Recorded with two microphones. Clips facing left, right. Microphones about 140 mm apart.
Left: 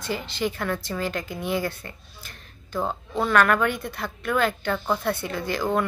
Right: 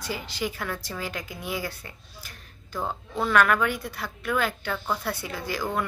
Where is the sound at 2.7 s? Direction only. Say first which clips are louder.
Left 4 dB; 20° left (ahead or behind).